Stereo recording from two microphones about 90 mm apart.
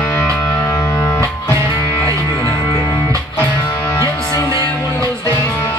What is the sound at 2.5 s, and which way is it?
Music, 55° left (ahead or behind).